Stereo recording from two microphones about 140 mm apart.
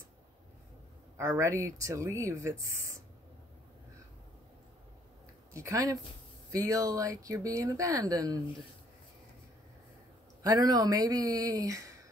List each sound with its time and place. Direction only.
1.1 s speech: 20° right (ahead or behind)
5.5 s speech: 20° right (ahead or behind)
10.4 s speech: 25° right (ahead or behind)